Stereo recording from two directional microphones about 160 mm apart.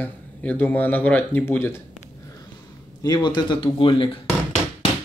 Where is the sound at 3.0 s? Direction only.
25° left (ahead or behind).